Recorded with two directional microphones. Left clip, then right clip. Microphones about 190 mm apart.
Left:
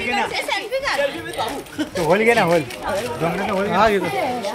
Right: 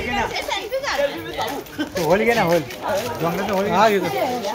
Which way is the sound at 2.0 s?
50° left (ahead or behind).